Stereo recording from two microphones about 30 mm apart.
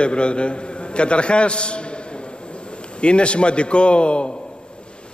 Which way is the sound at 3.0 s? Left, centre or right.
Left.